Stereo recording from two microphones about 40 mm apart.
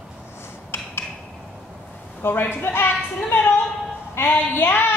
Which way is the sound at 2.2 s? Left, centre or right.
Left.